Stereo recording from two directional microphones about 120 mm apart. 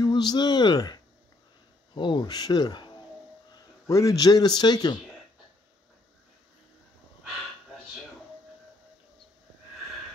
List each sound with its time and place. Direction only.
0.0 s speech: 35° left (ahead or behind)
3.5 s speech: 25° left (ahead or behind)